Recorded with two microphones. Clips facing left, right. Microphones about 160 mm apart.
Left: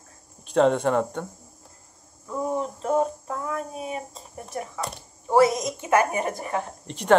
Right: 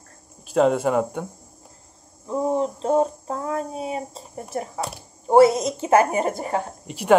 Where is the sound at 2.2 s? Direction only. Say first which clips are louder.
Right 5 dB; 25° right (ahead or behind).